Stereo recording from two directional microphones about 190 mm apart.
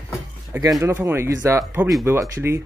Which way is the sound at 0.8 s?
15° right (ahead or behind).